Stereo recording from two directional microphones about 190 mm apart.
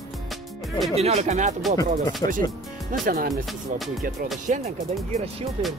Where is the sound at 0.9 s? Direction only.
35° right (ahead or behind).